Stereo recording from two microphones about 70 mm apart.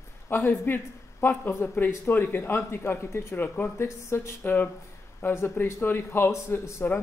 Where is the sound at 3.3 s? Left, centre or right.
Left.